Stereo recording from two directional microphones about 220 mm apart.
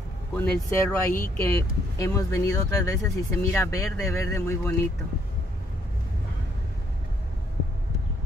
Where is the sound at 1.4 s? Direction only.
15° left (ahead or behind).